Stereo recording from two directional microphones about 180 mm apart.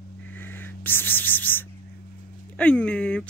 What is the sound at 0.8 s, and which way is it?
Speech, 10° left (ahead or behind).